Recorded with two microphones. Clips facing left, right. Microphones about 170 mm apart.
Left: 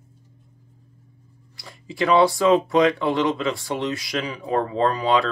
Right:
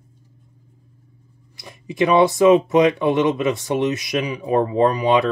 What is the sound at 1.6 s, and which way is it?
Speech, 20° right (ahead or behind).